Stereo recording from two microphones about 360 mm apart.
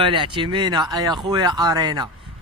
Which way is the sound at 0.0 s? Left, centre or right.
Centre.